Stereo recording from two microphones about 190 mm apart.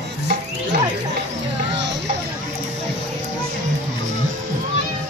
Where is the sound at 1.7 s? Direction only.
70° right (ahead or behind).